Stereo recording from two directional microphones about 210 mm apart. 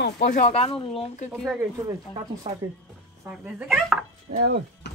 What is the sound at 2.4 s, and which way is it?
Speech, 25° right (ahead or behind).